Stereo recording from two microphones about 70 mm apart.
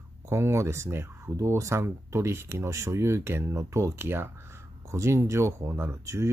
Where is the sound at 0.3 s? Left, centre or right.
Right.